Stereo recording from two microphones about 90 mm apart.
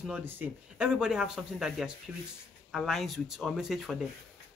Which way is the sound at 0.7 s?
10° right (ahead or behind).